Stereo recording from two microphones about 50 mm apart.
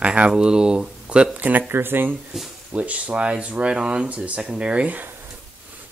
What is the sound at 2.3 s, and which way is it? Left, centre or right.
Speech, centre.